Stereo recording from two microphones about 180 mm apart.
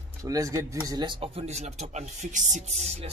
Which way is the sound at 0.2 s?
20° right (ahead or behind).